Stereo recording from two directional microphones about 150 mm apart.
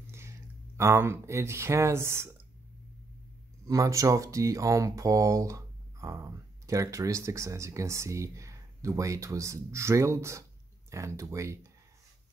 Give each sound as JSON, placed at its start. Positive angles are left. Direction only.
{"t": 0.0, "sound": "a sound", "side_deg": -15}
{"t": 0.7, "sound": "speech", "side_deg": -20}
{"t": 3.6, "sound": "speech", "side_deg": -20}